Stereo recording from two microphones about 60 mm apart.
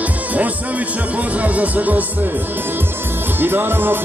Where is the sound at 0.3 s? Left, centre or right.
Right.